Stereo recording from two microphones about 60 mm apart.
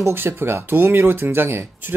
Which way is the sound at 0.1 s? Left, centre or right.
Right.